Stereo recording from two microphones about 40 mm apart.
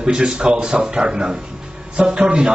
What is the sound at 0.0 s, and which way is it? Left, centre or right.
A man's voice, right.